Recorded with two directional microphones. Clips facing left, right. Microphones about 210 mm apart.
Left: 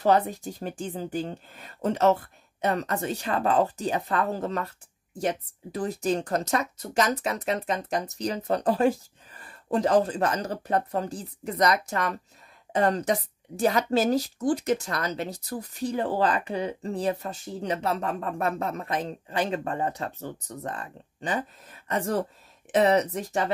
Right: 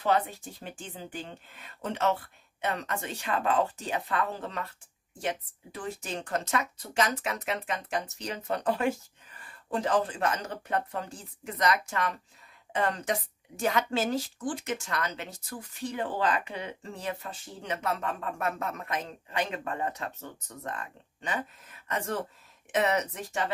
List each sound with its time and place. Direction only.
0.0 s a woman's voice: 40° left (ahead or behind)